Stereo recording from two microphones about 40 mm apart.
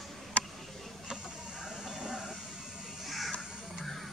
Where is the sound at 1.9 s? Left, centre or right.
Right.